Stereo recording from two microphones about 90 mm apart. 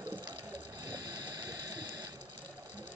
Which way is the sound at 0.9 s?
45° right (ahead or behind).